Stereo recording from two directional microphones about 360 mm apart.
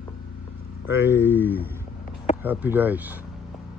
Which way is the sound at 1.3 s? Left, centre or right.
Centre.